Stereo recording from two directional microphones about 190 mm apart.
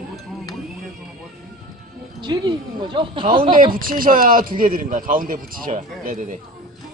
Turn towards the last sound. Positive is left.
turn(degrees=-40)  # may be behind; listen again after turning